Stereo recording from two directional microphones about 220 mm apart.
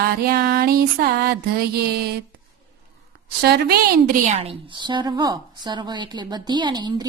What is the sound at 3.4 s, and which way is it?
A woman's voice, 45° right (ahead or behind).